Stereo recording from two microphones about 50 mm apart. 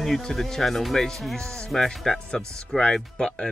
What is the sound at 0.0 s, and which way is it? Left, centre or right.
Speech, centre.